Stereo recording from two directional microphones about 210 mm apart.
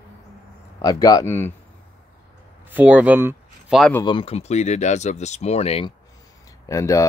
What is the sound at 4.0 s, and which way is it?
Speech, 25° left (ahead or behind).